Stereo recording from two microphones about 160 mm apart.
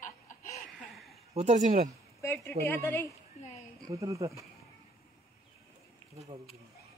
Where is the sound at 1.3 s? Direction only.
45° right (ahead or behind).